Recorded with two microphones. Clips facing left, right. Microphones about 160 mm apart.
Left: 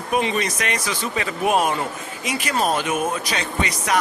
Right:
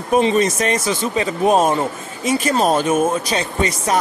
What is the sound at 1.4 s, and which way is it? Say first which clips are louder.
Speech: right 5 dB; 40° right (ahead or behind).